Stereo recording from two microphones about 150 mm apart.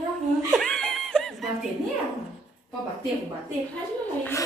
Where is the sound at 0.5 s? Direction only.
Centre (ahead or behind).